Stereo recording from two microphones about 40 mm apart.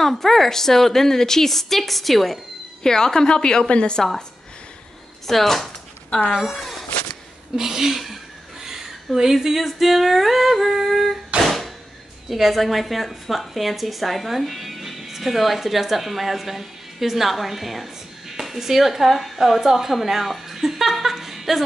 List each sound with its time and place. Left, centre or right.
0.1 s a woman's voice: centre
2.8 s speech: centre
5.2 s a woman's voice: centre
6.5 s a sound: centre
7.5 s speech: centre
8.6 s humming: centre
11.4 s a sound: centre
12.3 s a woman's voice: centre